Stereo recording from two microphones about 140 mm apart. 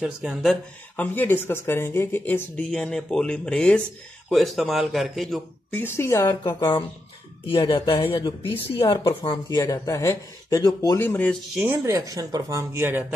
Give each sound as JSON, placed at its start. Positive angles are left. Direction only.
{"t": 0.0, "sound": "a man's voice", "side_deg": -5}
{"t": 0.9, "sound": "a man's voice", "side_deg": 10}
{"t": 5.8, "sound": "speech", "side_deg": 15}
{"t": 7.4, "sound": "speech", "side_deg": 40}
{"t": 11.6, "sound": "speech", "side_deg": -20}